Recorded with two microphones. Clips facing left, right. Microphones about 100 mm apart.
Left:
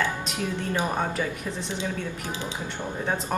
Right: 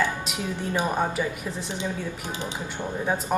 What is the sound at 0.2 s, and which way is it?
A woman's voice, 15° right (ahead or behind).